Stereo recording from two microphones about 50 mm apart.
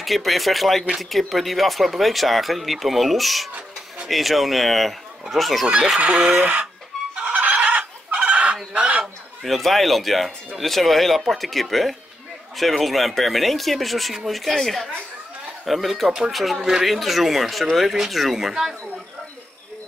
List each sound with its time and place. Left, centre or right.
0.0 s speech: centre
5.9 s speech: right
7.2 s chicken: right
8.7 s fowl: right
9.4 s speech: centre